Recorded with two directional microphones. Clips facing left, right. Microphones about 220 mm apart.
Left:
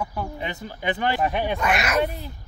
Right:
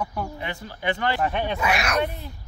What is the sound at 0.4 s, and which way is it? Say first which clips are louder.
Speech: left 1 dB; 20° left (ahead or behind).